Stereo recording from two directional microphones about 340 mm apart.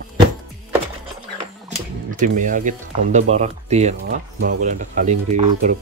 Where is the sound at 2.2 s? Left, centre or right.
Right.